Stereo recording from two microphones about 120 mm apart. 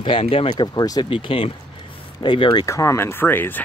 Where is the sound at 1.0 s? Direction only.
50° left (ahead or behind).